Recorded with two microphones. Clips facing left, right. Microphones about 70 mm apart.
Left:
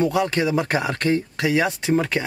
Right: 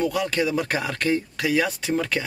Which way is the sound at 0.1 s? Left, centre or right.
Left.